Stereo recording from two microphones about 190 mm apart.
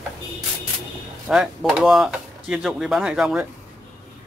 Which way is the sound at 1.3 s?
5° right (ahead or behind).